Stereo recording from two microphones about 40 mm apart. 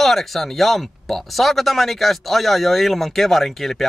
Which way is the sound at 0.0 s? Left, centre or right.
Centre.